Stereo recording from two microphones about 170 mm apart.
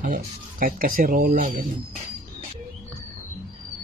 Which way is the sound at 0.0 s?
50° right (ahead or behind).